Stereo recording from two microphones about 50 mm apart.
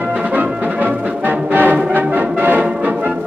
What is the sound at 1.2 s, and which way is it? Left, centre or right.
Brass instrument, right.